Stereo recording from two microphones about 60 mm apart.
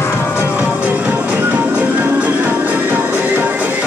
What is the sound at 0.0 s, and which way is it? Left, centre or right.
Music, left.